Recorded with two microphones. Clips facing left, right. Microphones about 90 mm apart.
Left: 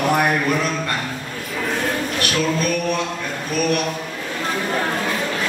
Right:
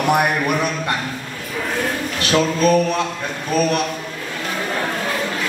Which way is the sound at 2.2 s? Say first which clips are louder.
Right 6 dB; 30° right (ahead or behind).